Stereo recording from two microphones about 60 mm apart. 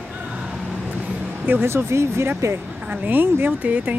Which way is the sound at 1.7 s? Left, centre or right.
Right.